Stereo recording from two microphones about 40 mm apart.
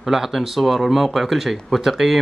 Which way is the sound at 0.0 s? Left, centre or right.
Centre.